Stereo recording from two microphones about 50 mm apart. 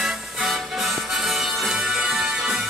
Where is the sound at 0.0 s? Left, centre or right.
Centre.